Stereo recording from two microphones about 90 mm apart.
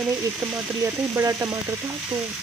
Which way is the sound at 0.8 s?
35° right (ahead or behind).